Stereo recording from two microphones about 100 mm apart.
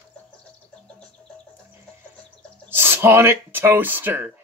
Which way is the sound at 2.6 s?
25° right (ahead or behind).